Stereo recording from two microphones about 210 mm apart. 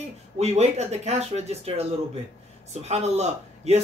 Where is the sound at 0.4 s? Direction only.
30° right (ahead or behind).